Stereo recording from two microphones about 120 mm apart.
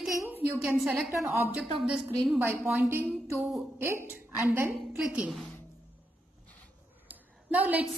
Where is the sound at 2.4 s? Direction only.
15° right (ahead or behind).